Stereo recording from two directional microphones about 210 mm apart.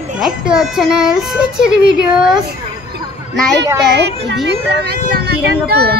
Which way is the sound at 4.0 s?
55° right (ahead or behind).